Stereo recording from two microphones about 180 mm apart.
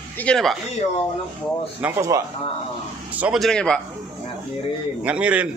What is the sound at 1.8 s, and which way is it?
Speech, 15° right (ahead or behind).